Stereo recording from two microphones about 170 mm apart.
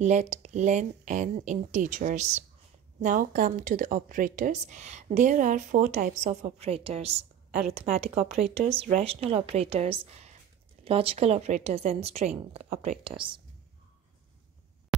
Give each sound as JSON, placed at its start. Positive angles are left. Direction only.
{"t": 0.0, "sound": "a woman's voice", "side_deg": -40}
{"t": 8.5, "sound": "speech", "side_deg": -35}